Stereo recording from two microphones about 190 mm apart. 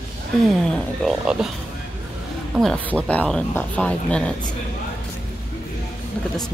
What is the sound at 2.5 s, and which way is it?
Speech, 5° left (ahead or behind).